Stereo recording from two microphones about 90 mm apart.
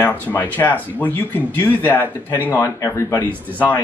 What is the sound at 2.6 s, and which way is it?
Speech, 35° left (ahead or behind).